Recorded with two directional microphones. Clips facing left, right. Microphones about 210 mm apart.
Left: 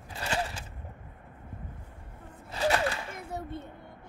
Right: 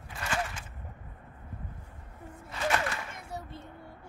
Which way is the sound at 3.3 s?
60° left (ahead or behind).